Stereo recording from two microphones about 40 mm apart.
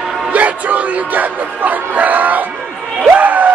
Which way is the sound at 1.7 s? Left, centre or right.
Right.